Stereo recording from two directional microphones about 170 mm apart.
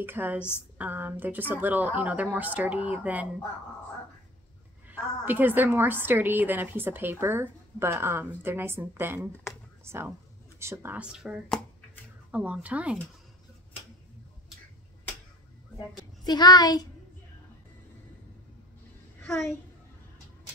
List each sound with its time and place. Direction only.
0.0 s a woman's voice: 10° right (ahead or behind)
4.8 s a woman's voice: 10° right (ahead or behind)
11.4 s finger snapping: 5° left (ahead or behind)
12.3 s a woman's voice: 5° right (ahead or behind)
16.3 s speech: 25° left (ahead or behind)
19.2 s a woman's voice: 5° left (ahead or behind)